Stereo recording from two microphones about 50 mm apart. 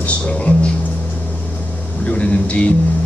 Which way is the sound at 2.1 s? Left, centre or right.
Left.